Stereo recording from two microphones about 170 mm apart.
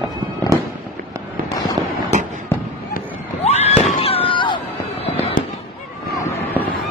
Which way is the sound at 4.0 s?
35° left (ahead or behind).